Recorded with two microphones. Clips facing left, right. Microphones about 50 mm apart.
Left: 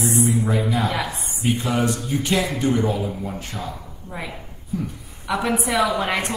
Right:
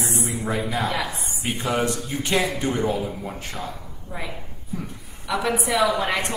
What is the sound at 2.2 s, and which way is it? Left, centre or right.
Speech, right.